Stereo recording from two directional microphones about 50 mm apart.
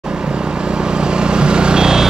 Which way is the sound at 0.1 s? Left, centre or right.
Centre.